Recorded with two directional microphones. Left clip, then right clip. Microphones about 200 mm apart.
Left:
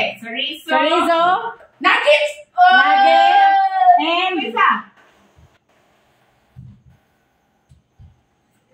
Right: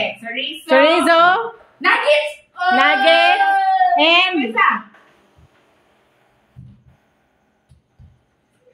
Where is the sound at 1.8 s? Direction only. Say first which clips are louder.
Left 1 dB; 20° right (ahead or behind).